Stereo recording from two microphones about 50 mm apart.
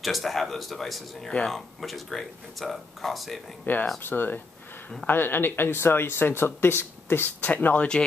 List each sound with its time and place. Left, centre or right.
0.0 s speech: centre
3.7 s speech: left
7.3 s speech: left